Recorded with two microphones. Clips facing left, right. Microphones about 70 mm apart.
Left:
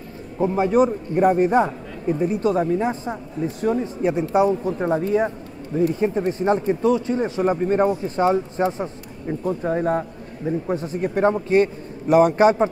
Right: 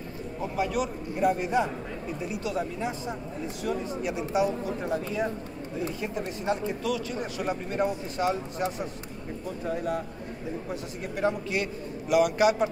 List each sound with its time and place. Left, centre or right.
0.4 s speech: left